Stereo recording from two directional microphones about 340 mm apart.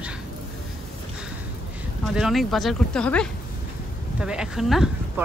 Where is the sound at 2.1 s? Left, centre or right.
Centre.